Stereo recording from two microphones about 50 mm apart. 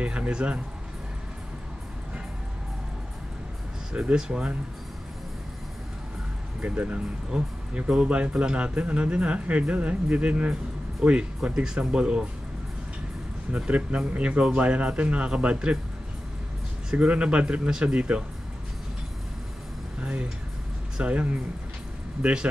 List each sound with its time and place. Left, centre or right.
0.0 s speech: right
3.9 s speech: centre
6.6 s speech: right
13.7 s speech: right
16.9 s speech: right
20.0 s speech: right